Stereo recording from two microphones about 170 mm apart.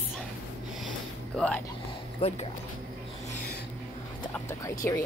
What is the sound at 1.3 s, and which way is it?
Speech, 5° left (ahead or behind).